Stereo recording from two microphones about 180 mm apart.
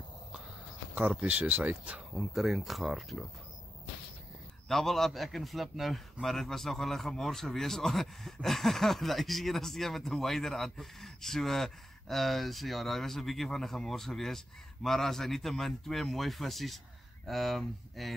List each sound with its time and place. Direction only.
0.9 s a man's voice: 10° right (ahead or behind)
4.6 s a man's voice: centre (ahead or behind)